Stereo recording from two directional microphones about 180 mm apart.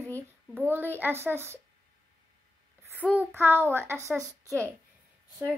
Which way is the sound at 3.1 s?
10° right (ahead or behind).